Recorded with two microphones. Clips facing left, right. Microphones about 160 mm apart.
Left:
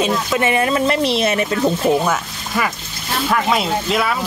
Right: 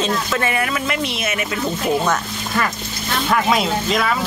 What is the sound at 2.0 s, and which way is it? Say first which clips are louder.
Speech: even; 10° left (ahead or behind).